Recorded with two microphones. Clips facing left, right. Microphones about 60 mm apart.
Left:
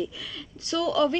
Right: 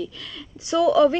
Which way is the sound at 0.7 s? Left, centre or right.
Right.